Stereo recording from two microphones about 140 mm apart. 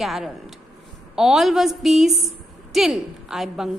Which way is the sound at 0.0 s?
Centre (ahead or behind).